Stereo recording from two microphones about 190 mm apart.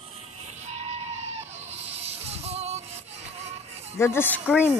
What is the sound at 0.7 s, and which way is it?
Goat, 35° right (ahead or behind).